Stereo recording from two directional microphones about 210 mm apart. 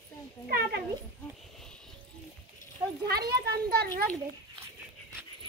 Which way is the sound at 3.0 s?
50° right (ahead or behind).